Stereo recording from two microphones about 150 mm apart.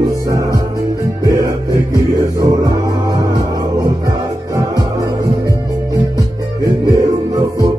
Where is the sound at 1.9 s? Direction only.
20° right (ahead or behind).